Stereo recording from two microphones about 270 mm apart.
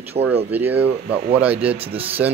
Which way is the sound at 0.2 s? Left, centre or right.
Right.